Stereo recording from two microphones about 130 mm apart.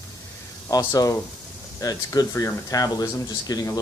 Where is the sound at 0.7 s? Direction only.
25° left (ahead or behind).